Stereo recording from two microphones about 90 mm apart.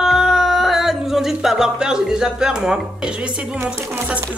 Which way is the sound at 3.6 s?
30° right (ahead or behind).